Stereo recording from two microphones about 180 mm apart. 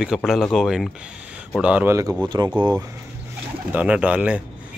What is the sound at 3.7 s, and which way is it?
Speech, 10° right (ahead or behind).